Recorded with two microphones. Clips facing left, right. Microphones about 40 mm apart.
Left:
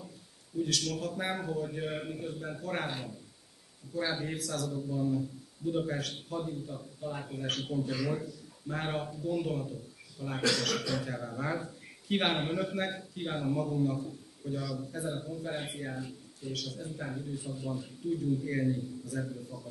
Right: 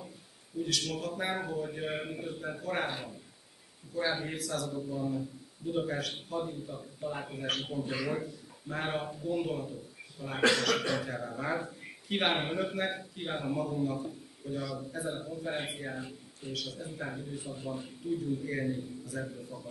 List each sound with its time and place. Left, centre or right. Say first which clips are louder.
0.6 s a man's voice: left 1 dB; centre
8.6 s a man's voice: even; centre
12.4 s a man's voice: even; centre
14.9 s speech: even; centre